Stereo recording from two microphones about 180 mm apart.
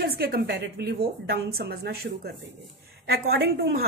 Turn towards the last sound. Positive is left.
turn(degrees=-60)  # may be behind; listen again after turning